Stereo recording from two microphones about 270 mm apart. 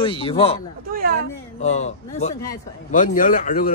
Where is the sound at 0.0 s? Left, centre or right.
Centre.